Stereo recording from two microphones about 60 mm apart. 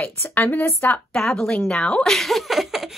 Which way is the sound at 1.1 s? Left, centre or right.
Centre.